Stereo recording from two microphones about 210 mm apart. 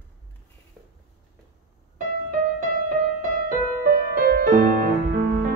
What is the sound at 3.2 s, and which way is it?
Music, 45° right (ahead or behind).